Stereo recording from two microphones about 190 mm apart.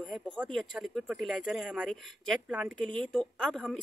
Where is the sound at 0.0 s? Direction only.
Centre (ahead or behind).